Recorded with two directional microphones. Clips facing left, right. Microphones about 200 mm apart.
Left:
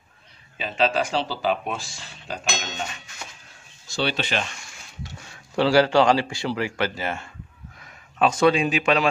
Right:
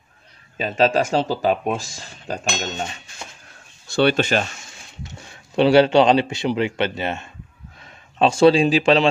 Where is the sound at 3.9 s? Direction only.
55° right (ahead or behind).